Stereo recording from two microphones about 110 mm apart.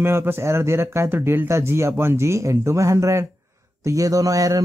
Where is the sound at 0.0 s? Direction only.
20° right (ahead or behind).